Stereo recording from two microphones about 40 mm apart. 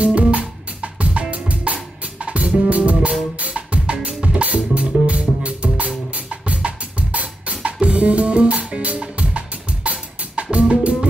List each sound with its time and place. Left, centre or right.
0.0 s music: right
1.3 s drum kit: right
2.2 s music: right
3.3 s drum: right
4.2 s music: right